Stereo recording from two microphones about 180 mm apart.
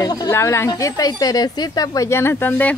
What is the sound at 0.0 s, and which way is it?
Speech, 20° left (ahead or behind).